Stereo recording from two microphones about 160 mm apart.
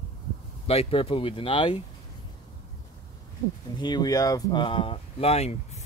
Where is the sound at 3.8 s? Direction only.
25° left (ahead or behind).